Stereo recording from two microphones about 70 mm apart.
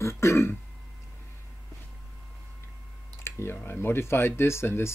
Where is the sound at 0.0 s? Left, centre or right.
Left.